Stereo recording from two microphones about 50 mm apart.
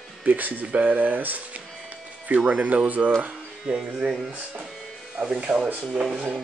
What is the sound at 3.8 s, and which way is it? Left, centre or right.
Speech, centre.